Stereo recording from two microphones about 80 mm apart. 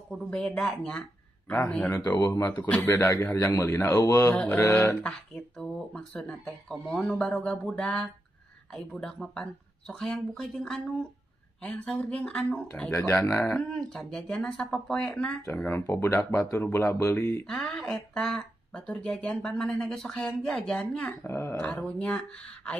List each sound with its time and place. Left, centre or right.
0.1 s speech: centre
1.7 s speech: centre
2.9 s speech: left
3.9 s speech: left
4.5 s speech: left
6.7 s speech: centre
7.2 s speech: centre
12.9 s speech: left
13.3 s speech: centre
15.6 s speech: left
17.5 s speech: centre
20.7 s speech: centre
21.2 s speech: left
21.7 s speech: centre